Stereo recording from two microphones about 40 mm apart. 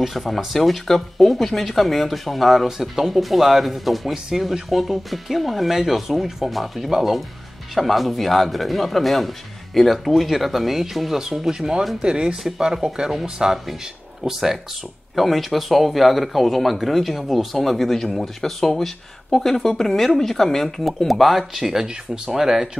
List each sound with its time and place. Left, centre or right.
0.0 s speech: centre
4.1 s speech: centre
4.6 s speech: centre
21.1 s speech: centre